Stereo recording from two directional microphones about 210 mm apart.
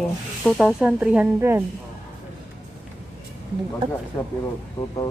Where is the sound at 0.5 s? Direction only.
Centre (ahead or behind).